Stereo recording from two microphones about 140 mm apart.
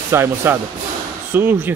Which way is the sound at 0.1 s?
15° right (ahead or behind).